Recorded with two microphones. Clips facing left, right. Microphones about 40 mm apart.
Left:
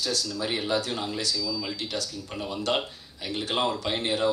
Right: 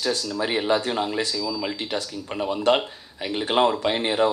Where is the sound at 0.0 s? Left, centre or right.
Right.